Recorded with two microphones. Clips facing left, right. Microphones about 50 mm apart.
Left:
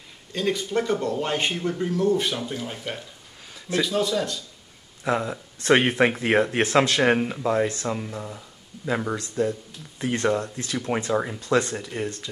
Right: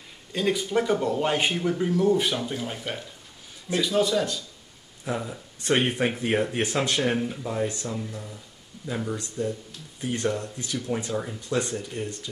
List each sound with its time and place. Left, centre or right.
0.3 s speech: centre
5.0 s speech: left